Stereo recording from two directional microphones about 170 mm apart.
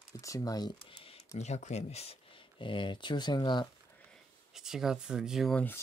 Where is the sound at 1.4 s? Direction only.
40° left (ahead or behind); by 3.7 s 25° left (ahead or behind).